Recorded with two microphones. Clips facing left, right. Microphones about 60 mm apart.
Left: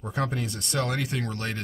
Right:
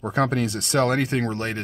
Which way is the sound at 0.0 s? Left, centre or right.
Right.